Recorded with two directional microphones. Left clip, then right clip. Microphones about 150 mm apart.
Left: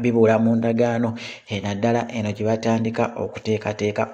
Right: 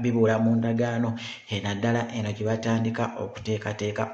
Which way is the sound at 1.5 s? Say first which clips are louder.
Left 6 dB; 35° left (ahead or behind).